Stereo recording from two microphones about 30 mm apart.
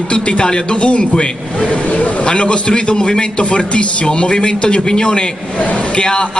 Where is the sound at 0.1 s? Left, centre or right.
Left.